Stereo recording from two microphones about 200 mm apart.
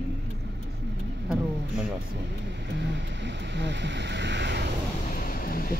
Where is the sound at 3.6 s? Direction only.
60° right (ahead or behind).